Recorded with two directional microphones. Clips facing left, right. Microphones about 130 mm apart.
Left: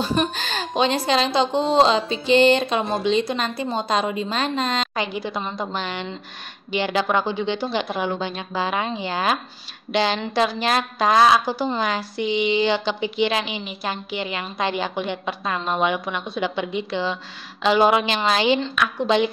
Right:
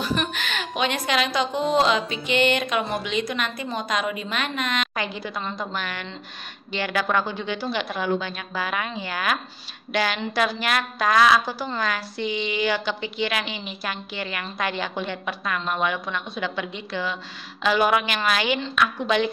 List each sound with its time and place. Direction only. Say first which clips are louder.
0.0 s a woman's voice: left 4 dB; 25° left (ahead or behind)